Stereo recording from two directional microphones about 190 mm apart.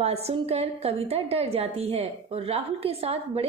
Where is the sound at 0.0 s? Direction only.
35° right (ahead or behind).